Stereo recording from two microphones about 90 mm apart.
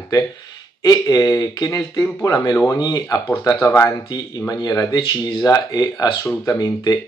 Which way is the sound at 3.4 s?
35° left (ahead or behind).